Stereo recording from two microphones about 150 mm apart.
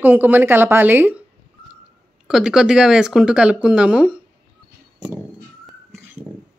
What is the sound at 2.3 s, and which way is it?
Speech, 5° right (ahead or behind).